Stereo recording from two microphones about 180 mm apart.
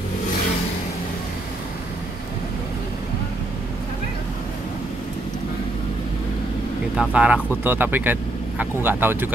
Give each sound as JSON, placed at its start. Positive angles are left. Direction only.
{"t": 7.0, "sound": "speech", "side_deg": -5}